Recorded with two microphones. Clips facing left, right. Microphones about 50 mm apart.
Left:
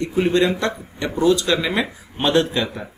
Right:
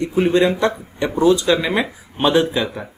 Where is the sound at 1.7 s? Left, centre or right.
Centre.